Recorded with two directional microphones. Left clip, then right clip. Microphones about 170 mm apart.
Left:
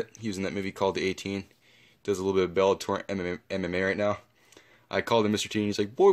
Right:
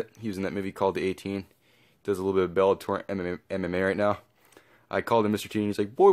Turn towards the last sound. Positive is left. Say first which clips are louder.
# right 2 dB
turn(degrees=0)  # may be behind; listen again after turning